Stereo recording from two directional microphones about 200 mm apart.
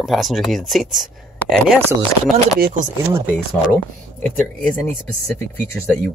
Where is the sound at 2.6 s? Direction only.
40° right (ahead or behind).